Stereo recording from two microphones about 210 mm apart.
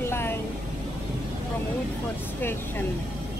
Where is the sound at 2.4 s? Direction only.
10° left (ahead or behind).